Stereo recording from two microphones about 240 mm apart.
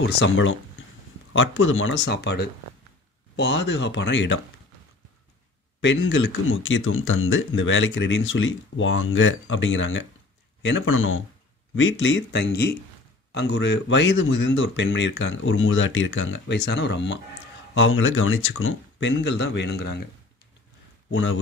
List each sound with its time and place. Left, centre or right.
0.0 s speech: left
5.8 s speech: left
21.1 s speech: left